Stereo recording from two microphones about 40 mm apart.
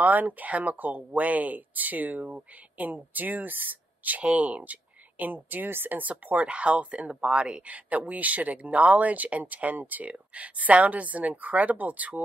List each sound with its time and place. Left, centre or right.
0.0 s speech: right
4.2 s speech: right
5.7 s speech: right
5.9 s speech: right